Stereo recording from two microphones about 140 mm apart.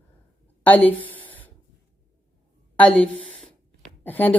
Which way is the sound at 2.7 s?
10° left (ahead or behind).